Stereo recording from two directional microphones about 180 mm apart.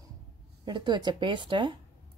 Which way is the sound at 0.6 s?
25° right (ahead or behind).